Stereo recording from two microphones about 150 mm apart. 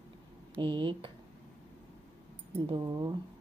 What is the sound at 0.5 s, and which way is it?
Speech, 35° right (ahead or behind).